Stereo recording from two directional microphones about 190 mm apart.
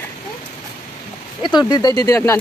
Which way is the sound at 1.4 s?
25° left (ahead or behind).